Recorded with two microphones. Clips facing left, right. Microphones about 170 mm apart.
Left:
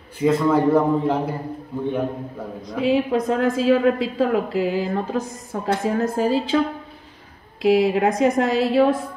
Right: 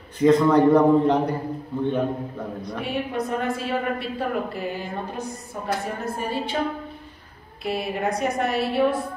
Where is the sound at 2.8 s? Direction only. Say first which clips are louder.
Left 9 dB; 90° left.